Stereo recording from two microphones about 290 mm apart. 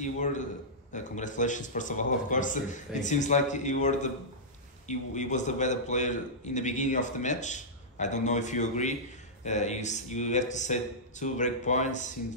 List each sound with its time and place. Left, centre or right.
0.0 s a man's voice: left